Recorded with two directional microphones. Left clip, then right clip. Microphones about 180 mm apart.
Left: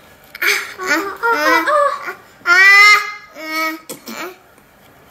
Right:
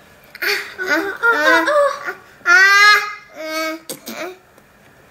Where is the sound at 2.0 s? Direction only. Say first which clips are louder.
Even; 30° left (ahead or behind).